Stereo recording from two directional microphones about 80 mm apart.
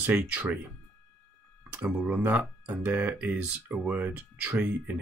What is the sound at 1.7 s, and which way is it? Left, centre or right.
Speech, centre.